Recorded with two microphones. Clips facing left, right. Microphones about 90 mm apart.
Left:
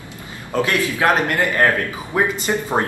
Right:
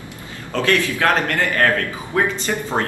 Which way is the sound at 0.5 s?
15° left (ahead or behind).